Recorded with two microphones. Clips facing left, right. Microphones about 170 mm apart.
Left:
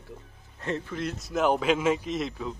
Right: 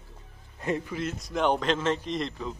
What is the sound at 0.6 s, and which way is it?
Speech, 15° right (ahead or behind).